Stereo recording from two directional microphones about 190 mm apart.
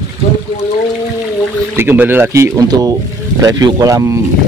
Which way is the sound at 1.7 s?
10° right (ahead or behind).